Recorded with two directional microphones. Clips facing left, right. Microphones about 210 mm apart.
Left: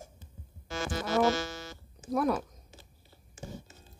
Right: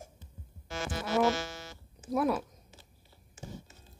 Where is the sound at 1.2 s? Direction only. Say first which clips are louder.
Left 1 dB; 40° left (ahead or behind).